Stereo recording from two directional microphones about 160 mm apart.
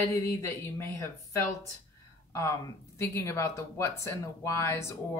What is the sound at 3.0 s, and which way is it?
Speech, 20° left (ahead or behind).